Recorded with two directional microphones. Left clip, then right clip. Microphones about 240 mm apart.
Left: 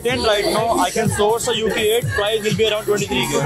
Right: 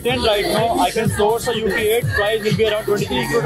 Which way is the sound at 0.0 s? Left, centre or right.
Left.